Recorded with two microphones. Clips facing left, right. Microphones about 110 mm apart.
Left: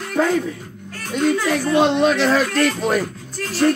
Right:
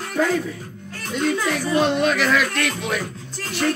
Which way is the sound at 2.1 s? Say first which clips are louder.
Left 3 dB; 30° left (ahead or behind).